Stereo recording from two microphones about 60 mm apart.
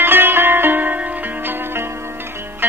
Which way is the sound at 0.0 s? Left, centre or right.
Right.